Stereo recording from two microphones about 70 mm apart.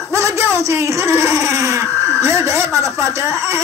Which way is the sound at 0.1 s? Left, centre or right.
Right.